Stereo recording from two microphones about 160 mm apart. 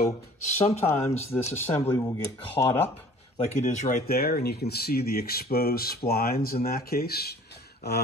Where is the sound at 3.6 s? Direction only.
50° left (ahead or behind).